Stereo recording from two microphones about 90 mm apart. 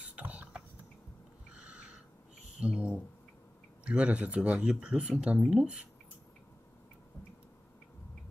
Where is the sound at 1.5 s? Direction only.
10° right (ahead or behind).